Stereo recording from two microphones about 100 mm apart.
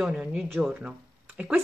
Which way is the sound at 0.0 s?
5° right (ahead or behind).